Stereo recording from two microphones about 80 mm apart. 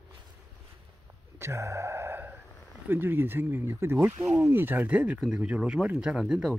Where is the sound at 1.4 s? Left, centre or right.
Right.